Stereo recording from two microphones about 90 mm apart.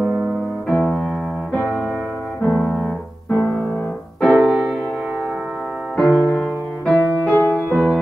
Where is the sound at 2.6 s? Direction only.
10° left (ahead or behind).